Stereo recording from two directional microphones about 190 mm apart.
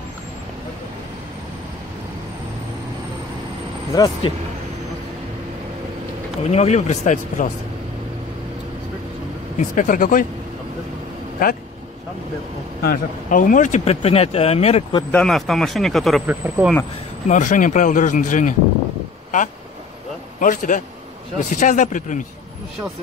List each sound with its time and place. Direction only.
4.2 s speech: 30° left (ahead or behind)
6.5 s speech: 35° left (ahead or behind)
9.6 s speech: 45° left (ahead or behind)
11.4 s speech: 50° left (ahead or behind)
12.8 s speech: 45° left (ahead or behind)
15.0 s a man's voice: 5° left (ahead or behind)
17.3 s speech: 40° left (ahead or behind)
20.3 s speech: 45° left (ahead or behind)